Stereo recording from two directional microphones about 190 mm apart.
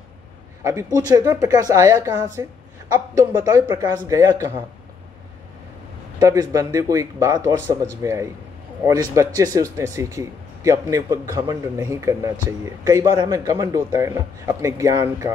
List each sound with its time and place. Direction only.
0.9 s speech: 20° right (ahead or behind)
6.1 s speech: 20° right (ahead or behind)